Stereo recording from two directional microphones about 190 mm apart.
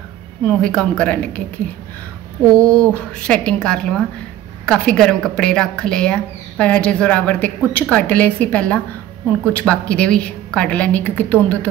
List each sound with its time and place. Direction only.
0.5 s speech: 5° left (ahead or behind)
2.4 s speech: 15° right (ahead or behind)
2.7 s a woman's voice: 5° left (ahead or behind)